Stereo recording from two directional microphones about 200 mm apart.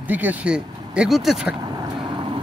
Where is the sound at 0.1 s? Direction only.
10° right (ahead or behind).